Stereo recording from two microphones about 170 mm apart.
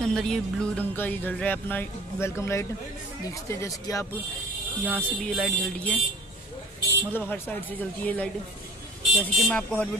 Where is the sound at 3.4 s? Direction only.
15° left (ahead or behind).